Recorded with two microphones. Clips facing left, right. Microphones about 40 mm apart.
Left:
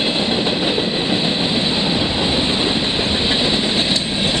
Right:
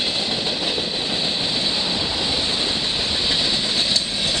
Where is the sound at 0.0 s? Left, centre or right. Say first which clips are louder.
Left 6 dB; left.